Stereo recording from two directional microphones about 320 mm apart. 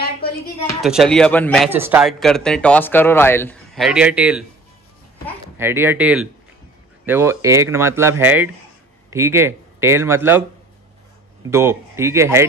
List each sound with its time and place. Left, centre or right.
0.0 s a sound: left
0.7 s speech: centre
5.6 s speech: centre
11.5 s speech: centre